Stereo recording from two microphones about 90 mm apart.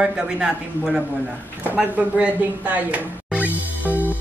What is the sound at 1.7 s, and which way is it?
Music, 15° right (ahead or behind).